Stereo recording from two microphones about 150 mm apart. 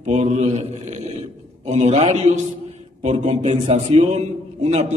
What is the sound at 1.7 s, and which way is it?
A man's voice, 45° right (ahead or behind).